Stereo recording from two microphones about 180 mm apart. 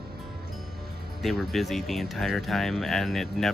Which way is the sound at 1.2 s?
Centre (ahead or behind).